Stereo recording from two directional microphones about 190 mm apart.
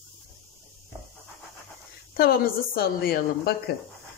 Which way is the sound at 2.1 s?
50° left (ahead or behind).